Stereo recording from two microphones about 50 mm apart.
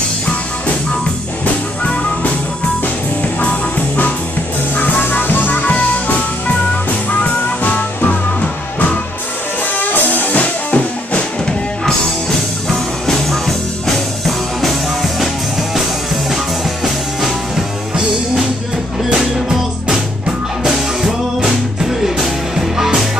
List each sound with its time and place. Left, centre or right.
4.7 s music: left
9.8 s music: left
12.6 s music: centre
19.5 s music: centre
21.8 s music: centre